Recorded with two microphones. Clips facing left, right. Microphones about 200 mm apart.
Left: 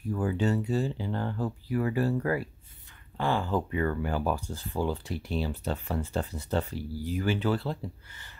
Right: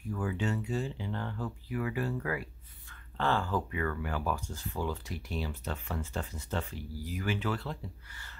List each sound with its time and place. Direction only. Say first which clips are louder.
0.1 s speech: left 6 dB; 35° left (ahead or behind)
3.2 s speech: left 3 dB; 15° left (ahead or behind); by 7.8 s 30° left (ahead or behind)